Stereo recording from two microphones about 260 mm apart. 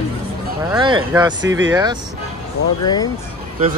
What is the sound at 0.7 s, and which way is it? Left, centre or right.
Speech, centre.